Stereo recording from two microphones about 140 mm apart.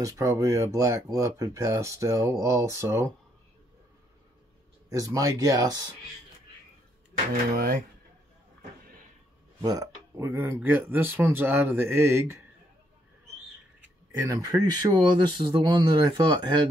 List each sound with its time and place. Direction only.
0.0 s speech: 20° right (ahead or behind)
4.8 s speech: 25° right (ahead or behind)
7.5 s speech: 90° right
9.6 s speech: 25° right (ahead or behind)
14.2 s speech: 25° right (ahead or behind)